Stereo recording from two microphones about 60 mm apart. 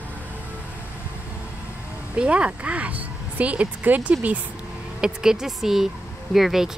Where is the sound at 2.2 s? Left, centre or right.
Centre.